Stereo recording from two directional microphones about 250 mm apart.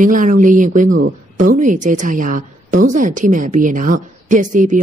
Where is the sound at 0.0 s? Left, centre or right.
Right.